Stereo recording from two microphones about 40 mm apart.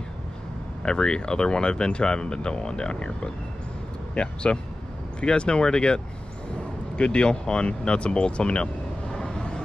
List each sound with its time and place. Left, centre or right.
0.8 s speech: left
9.1 s vehicle: left